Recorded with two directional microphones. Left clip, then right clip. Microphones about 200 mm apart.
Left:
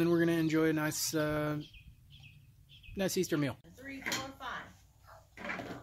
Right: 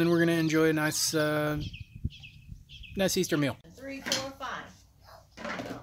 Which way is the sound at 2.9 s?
5° right (ahead or behind).